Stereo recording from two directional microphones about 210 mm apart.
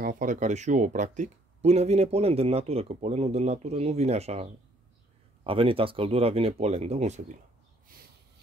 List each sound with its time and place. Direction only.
0.0 s speech: 40° right (ahead or behind)